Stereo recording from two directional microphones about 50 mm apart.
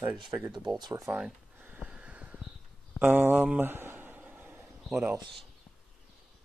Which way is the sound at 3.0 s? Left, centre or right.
Right.